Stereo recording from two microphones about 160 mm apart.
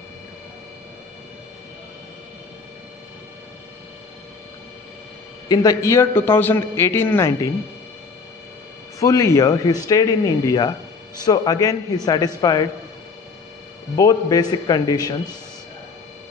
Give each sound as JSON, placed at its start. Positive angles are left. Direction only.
{"t": 5.5, "sound": "a man's voice", "side_deg": 25}
{"t": 9.0, "sound": "speech", "side_deg": 20}
{"t": 13.9, "sound": "speech", "side_deg": 20}